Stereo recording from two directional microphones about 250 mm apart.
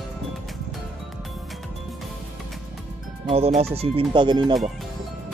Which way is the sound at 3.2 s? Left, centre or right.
Right.